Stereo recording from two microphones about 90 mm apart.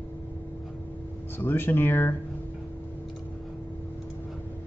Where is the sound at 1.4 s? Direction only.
25° left (ahead or behind).